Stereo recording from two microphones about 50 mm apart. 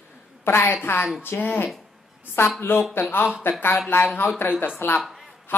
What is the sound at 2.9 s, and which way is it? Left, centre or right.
Speech, left.